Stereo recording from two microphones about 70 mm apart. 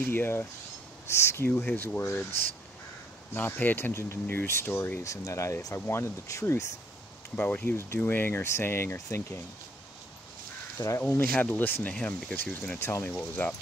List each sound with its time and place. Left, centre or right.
0.0 s speech: left
3.3 s speech: left
5.0 s speech: left
5.9 s speech: left
7.3 s speech: left
10.8 s speech: left